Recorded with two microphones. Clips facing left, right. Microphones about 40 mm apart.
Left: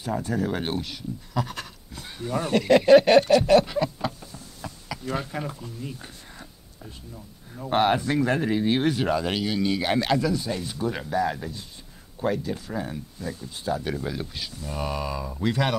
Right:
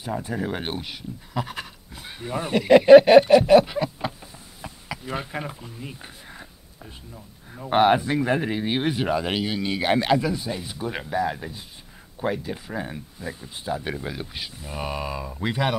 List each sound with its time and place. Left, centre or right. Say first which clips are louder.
0.0 s speech: left 1 dB; centre